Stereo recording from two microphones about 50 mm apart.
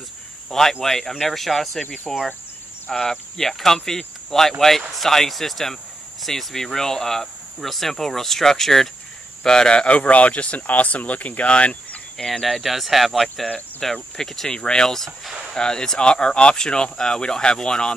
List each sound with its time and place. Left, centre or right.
0.5 s speech: centre
9.9 s speech: left
12.2 s speech: centre